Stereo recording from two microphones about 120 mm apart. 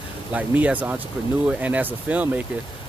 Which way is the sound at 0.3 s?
10° right (ahead or behind).